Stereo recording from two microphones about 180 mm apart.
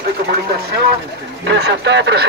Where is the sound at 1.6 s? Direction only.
75° right (ahead or behind).